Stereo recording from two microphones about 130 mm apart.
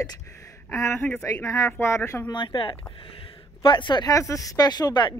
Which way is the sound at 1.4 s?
25° left (ahead or behind).